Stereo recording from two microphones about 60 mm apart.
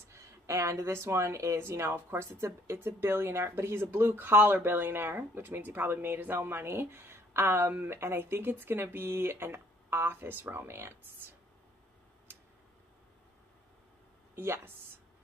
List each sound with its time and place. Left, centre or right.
0.1 s speech: right
14.3 s speech: right